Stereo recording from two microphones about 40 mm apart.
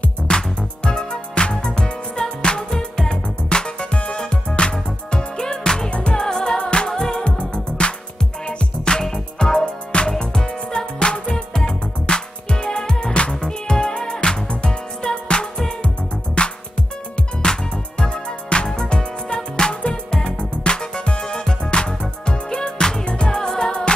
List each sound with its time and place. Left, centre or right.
0.3 s music: left
6.2 s music: centre
7.2 s music: left
17.4 s music: centre